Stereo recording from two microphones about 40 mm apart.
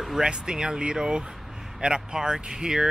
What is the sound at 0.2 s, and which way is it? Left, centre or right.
Speech, right.